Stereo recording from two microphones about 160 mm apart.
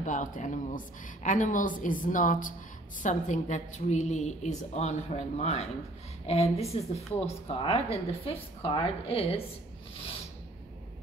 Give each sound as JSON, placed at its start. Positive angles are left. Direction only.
{"t": 0.0, "sound": "a woman's voice", "side_deg": 50}